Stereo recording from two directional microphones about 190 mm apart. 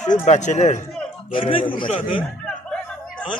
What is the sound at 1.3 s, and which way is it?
Speech, 30° left (ahead or behind).